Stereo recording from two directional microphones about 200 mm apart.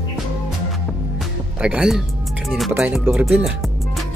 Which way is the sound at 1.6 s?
5° right (ahead or behind).